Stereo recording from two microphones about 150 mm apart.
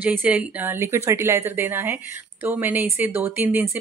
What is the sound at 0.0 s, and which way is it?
A woman's voice, 10° right (ahead or behind).